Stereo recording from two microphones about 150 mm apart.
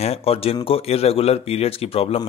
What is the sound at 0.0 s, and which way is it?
Speech, 40° left (ahead or behind).